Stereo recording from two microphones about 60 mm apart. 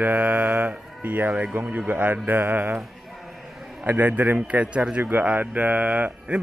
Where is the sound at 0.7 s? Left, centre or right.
Right.